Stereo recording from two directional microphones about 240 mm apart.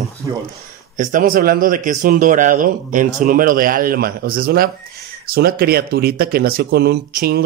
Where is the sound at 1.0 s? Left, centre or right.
Right.